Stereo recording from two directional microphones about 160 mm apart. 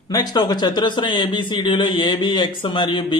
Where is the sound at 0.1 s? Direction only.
25° left (ahead or behind).